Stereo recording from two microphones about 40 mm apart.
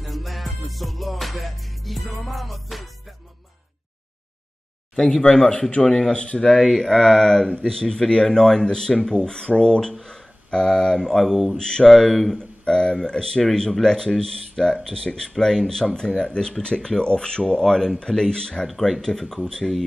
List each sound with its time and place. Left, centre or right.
0.0 s music: centre
4.9 s speech: centre
6.1 s speech: left
6.4 s speech: centre
11.5 s speech: centre
11.9 s speech: centre
12.4 s speech: left